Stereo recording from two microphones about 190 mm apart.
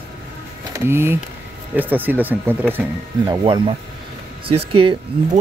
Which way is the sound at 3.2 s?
20° right (ahead or behind).